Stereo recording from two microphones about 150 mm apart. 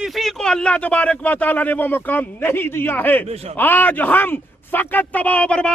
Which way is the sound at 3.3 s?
45° right (ahead or behind).